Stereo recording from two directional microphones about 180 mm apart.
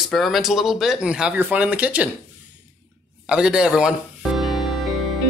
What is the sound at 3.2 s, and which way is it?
Music, 5° right (ahead or behind).